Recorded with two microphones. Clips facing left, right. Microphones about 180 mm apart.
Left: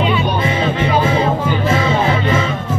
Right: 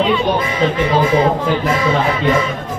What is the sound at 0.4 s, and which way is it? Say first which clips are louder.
Music: right 1 dB; 25° left (ahead or behind).